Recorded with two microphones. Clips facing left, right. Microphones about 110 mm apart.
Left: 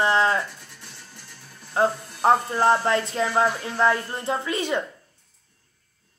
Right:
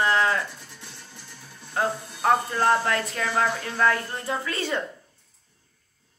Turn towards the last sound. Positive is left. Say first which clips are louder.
# left 3 dB
turn(degrees=15)  # may be behind; listen again after turning